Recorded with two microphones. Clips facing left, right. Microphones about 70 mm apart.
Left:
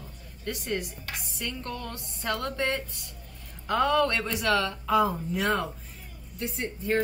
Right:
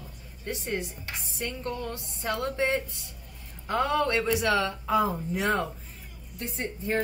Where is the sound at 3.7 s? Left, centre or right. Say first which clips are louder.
Left 2 dB; right.